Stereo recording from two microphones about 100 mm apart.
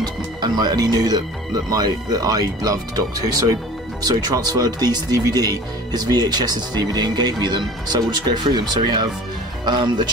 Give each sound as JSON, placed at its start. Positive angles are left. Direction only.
{"t": 0.4, "sound": "speech", "side_deg": -45}